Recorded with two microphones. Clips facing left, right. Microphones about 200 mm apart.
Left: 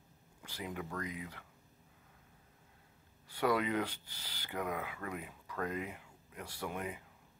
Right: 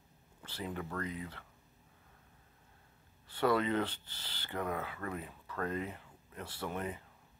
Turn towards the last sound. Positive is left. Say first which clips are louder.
# right 2 dB
turn(degrees=10)  # may be behind; listen again after turning